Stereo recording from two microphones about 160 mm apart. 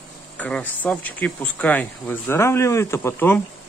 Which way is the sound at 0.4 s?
10° left (ahead or behind).